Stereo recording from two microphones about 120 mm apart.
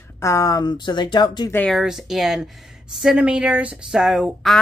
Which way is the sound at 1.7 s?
5° right (ahead or behind).